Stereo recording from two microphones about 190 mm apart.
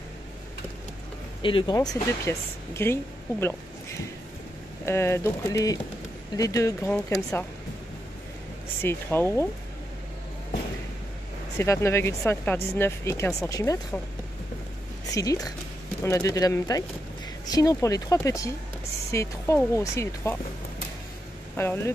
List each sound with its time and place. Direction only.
1.4 s speech: 25° left (ahead or behind)
4.8 s speech: 15° left (ahead or behind)
8.8 s speech: 10° left (ahead or behind)
11.5 s speech: 15° left (ahead or behind)
15.0 s speech: 20° left (ahead or behind)
21.5 s speech: 15° left (ahead or behind)